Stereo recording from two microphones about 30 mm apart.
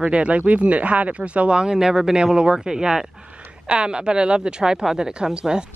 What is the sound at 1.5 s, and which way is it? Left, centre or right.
A woman's voice, right.